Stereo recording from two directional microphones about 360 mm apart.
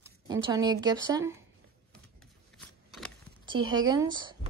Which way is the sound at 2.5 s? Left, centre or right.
Centre.